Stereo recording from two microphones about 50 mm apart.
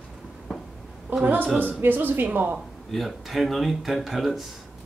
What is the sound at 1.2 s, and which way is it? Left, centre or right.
Speech, right.